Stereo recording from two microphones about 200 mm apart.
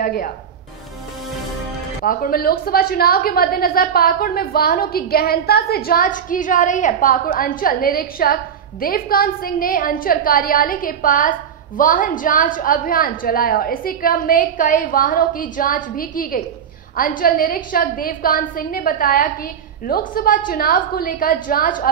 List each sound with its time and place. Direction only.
0.0 s speech: 45° left (ahead or behind)
2.0 s a woman's voice: 45° left (ahead or behind)